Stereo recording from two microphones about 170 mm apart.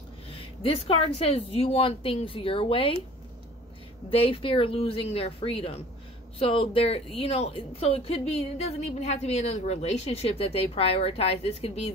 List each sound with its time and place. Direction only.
0.3 s a woman's voice: 35° left (ahead or behind)
4.1 s a woman's voice: 35° left (ahead or behind)